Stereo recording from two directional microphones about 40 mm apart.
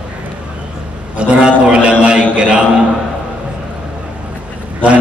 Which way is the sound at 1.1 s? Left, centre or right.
Right.